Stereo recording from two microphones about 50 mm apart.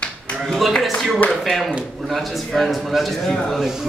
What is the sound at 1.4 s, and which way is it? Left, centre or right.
Speech, centre.